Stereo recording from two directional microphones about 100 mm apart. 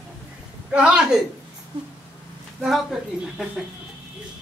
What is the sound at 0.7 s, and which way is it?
Speech, 10° right (ahead or behind).